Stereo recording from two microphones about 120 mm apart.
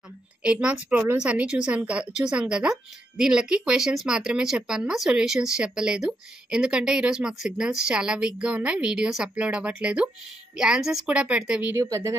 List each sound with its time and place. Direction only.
0.4 s a woman's voice: 10° right (ahead or behind)
11.7 s speech: 25° right (ahead or behind)